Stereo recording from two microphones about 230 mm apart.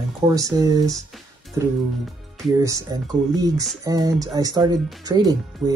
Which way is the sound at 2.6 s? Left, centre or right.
Centre.